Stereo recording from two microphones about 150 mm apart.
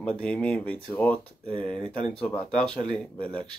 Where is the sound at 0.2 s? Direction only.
5° left (ahead or behind).